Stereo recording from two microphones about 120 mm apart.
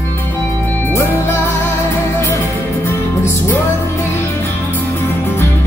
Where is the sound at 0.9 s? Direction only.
25° left (ahead or behind).